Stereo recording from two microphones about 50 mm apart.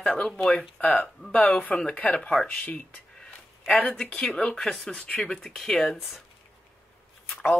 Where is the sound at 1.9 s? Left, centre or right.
Left.